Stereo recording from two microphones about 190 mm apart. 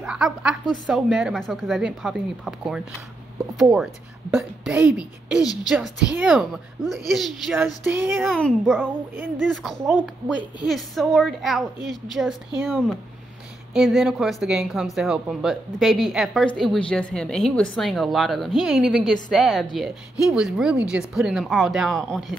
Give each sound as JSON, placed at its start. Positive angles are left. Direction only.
{"t": 0.0, "sound": "a woman's voice", "side_deg": -5}
{"t": 5.4, "sound": "a woman's voice", "side_deg": 20}
{"t": 5.7, "sound": "a woman's voice", "side_deg": -5}
{"t": 7.6, "sound": "a sound", "side_deg": -10}
{"t": 8.4, "sound": "a woman's voice", "side_deg": 5}